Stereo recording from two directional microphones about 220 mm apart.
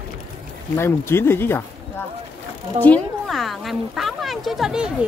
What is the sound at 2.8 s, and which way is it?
Speech, 5° left (ahead or behind).